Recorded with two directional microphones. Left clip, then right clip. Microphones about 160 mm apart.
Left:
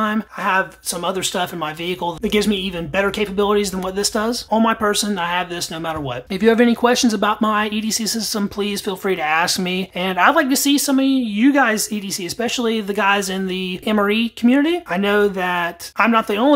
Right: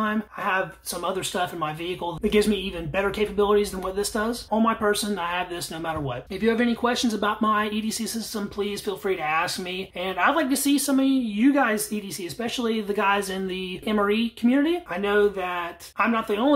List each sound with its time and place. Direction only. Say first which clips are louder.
0.0 s speech: left 6 dB; 35° left (ahead or behind)
6.4 s speech: left 9 dB; 40° left (ahead or behind)